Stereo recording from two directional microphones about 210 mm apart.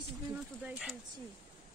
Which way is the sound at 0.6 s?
Centre (ahead or behind).